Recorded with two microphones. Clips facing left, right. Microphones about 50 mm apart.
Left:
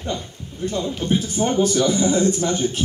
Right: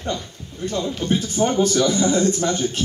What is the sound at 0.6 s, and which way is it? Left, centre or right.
A man's voice, centre.